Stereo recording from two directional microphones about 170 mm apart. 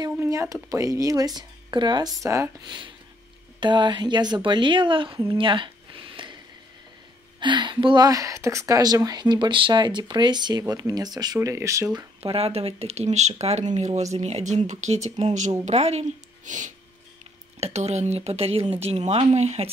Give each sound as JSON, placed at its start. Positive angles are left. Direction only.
{"t": 0.0, "sound": "a woman's voice", "side_deg": -20}
{"t": 7.3, "sound": "speech", "side_deg": -25}
{"t": 12.2, "sound": "speech", "side_deg": -35}